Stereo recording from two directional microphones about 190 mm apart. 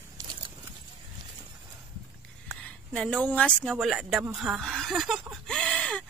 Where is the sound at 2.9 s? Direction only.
5° left (ahead or behind).